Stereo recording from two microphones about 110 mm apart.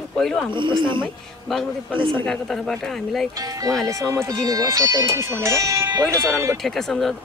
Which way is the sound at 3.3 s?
35° right (ahead or behind).